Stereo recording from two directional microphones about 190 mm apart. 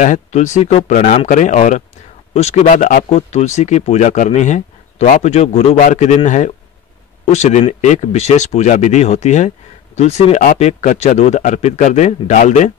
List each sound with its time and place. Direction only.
0.0 s speech: 40° left (ahead or behind)